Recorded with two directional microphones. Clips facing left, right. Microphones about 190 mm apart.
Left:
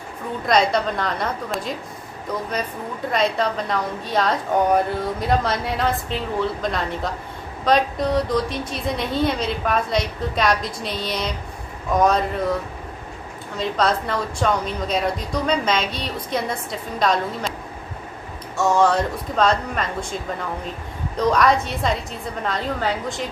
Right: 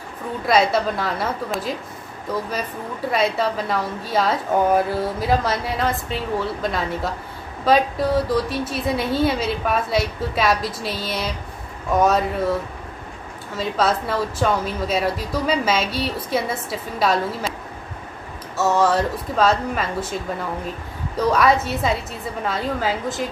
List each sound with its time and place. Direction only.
0.5 s a woman's voice: 5° right (ahead or behind)
3.1 s a woman's voice: 5° right (ahead or behind)
13.6 s a woman's voice: 5° right (ahead or behind)
18.6 s a woman's voice: 5° right (ahead or behind)
21.2 s a woman's voice: 5° right (ahead or behind)